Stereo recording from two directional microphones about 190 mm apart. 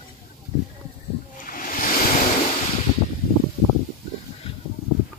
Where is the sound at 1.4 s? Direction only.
45° left (ahead or behind).